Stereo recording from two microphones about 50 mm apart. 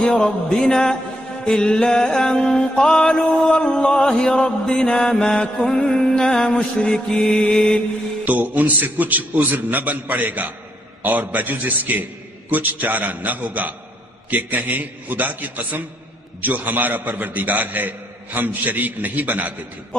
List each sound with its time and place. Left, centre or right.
0.0 s music: centre
8.3 s a man's voice: right